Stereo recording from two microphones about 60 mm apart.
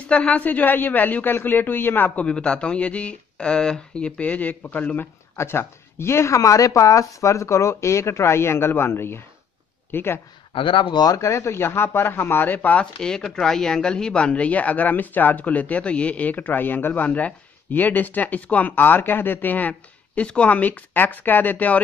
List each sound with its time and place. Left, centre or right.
0.1 s a woman's voice: left
2.2 s speech: centre
5.3 s speech: left
11.1 s a woman's voice: left
13.0 s speech: centre; by 19.7 s left
19.7 s speech: centre